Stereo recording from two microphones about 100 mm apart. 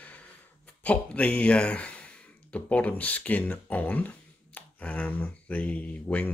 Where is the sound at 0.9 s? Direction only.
10° left (ahead or behind).